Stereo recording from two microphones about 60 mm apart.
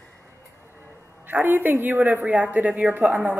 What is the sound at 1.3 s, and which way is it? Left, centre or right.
Speech, right.